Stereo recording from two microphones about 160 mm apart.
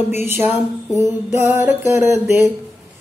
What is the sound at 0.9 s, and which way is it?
Music, 15° right (ahead or behind).